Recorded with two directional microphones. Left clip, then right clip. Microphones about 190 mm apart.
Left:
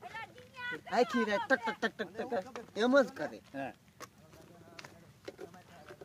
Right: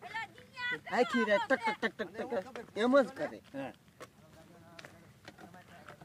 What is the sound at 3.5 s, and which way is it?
Speech, 5° right (ahead or behind).